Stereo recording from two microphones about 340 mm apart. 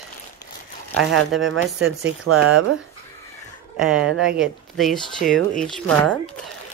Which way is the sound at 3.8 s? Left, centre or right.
Centre.